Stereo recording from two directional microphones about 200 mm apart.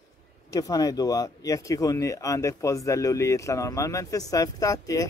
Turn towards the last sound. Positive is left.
turn(degrees=15)  # may be behind; listen again after turning